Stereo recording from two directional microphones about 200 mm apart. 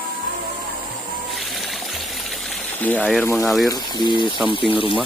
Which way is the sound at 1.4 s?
Centre (ahead or behind).